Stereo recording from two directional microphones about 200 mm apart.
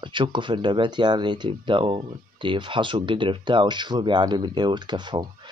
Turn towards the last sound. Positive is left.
turn(degrees=-20)  # may be behind; listen again after turning